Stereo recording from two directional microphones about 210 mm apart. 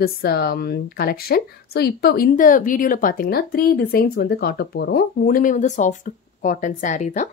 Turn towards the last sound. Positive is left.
turn(degrees=35)  # may be behind; listen again after turning